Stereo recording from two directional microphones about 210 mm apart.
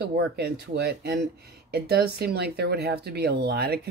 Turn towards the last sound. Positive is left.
turn(degrees=-50)  # may be behind; listen again after turning